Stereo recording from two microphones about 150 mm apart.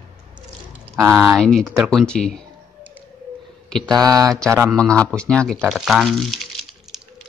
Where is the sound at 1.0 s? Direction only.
15° right (ahead or behind).